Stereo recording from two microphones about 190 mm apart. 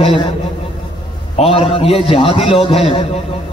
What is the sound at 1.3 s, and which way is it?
A man's voice, 30° left (ahead or behind).